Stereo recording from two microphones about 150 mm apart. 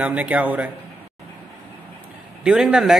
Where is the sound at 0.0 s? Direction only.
10° right (ahead or behind).